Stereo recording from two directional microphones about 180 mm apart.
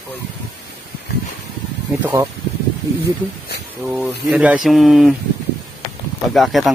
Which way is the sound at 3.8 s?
5° right (ahead or behind).